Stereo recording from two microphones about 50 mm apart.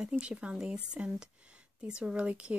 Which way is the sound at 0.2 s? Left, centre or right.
Right.